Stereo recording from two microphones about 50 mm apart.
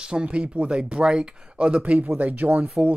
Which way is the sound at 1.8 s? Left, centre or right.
Right.